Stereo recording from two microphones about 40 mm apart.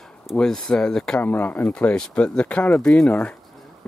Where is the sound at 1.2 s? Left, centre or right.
Left.